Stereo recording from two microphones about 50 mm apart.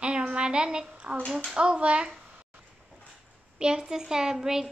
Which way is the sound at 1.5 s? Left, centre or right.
Right.